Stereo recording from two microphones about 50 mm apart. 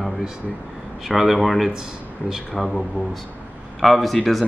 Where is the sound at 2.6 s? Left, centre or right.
Centre.